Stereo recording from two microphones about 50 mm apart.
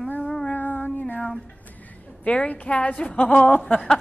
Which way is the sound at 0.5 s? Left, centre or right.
Left.